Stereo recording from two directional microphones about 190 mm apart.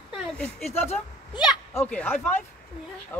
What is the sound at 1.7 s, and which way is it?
Speech, 10° left (ahead or behind).